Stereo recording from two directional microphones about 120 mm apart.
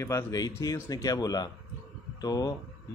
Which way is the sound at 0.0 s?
30° left (ahead or behind).